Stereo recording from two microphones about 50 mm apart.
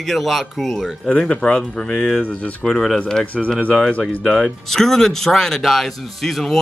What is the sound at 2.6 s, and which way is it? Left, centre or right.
Speech, centre.